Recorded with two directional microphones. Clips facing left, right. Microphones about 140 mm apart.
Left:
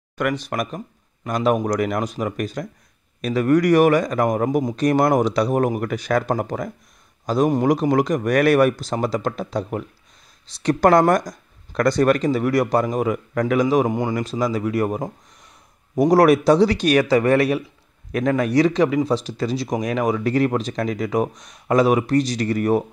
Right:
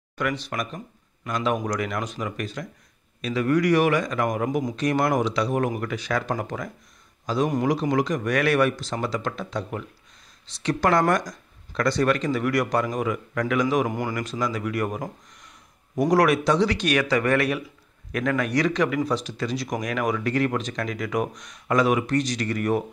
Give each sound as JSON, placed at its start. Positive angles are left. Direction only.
{"t": 0.2, "sound": "speech", "side_deg": 50}
{"t": 7.9, "sound": "speech", "side_deg": 45}
{"t": 16.1, "sound": "speech", "side_deg": 35}